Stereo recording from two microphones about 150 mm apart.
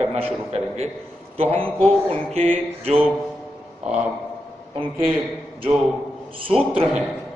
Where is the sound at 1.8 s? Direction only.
5° left (ahead or behind).